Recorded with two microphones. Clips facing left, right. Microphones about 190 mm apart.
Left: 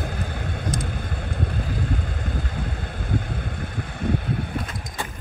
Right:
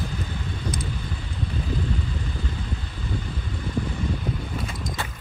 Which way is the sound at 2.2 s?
55° left (ahead or behind).